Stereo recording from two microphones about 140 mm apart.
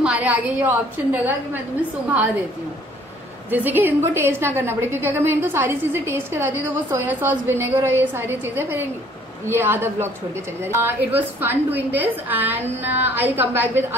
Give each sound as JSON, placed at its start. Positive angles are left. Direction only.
{"t": 0.0, "sound": "a woman's voice", "side_deg": -10}
{"t": 3.4, "sound": "a woman's voice", "side_deg": -15}